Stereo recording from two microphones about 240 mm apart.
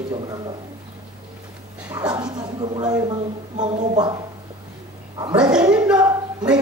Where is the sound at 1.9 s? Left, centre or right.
Centre.